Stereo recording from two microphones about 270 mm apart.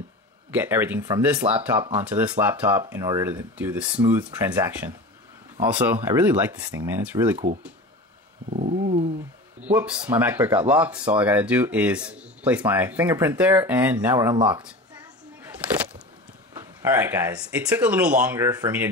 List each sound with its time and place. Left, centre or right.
0.5 s speech: centre
8.5 s a sound: right
9.6 s speech: centre
16.5 s speech: centre